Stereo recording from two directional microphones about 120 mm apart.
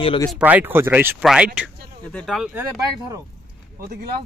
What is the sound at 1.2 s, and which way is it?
Speech, 10° right (ahead or behind).